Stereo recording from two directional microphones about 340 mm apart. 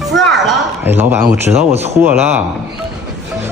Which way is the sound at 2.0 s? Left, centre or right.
Centre.